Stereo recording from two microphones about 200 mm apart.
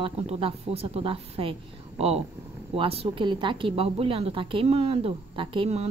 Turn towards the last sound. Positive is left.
turn(degrees=-30)  # may be behind; listen again after turning